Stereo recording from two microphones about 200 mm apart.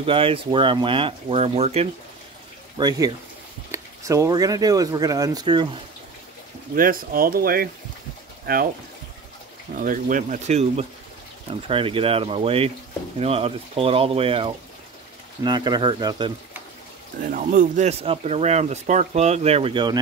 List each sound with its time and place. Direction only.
0.0 s speech: 25° right (ahead or behind)
2.8 s speech: 20° right (ahead or behind)
6.7 s speech: 45° right (ahead or behind)
9.8 s speech: 40° right (ahead or behind); by 16.3 s 20° right (ahead or behind)
17.3 s speech: 40° right (ahead or behind); by 20.0 s 20° right (ahead or behind)